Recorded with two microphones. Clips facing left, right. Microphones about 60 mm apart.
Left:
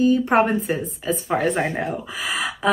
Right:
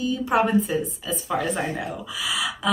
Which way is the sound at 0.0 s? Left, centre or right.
Left.